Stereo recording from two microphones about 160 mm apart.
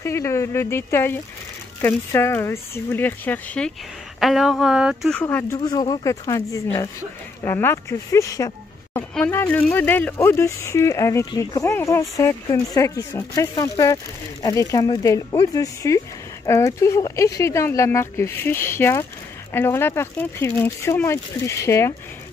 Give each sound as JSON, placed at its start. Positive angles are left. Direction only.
{"t": 0.0, "sound": "speech", "side_deg": 15}
{"t": 5.2, "sound": "speech", "side_deg": 15}
{"t": 9.1, "sound": "speech", "side_deg": 10}